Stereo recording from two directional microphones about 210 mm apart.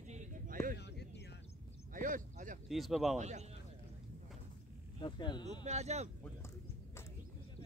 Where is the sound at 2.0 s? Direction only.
40° right (ahead or behind).